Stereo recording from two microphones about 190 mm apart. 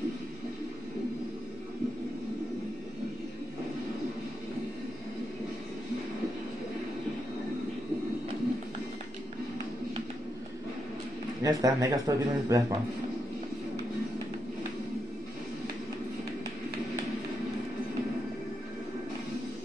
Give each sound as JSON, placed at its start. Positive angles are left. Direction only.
{"t": 11.4, "sound": "speech", "side_deg": -20}